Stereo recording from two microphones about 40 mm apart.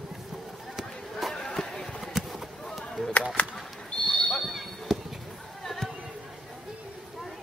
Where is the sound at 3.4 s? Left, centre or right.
Left.